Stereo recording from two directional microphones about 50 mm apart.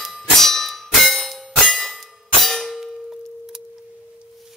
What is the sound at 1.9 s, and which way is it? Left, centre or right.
Clang, centre.